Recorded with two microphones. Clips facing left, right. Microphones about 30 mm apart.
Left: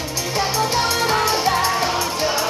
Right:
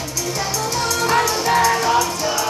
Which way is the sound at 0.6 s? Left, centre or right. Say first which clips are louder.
Left 1 dB; left.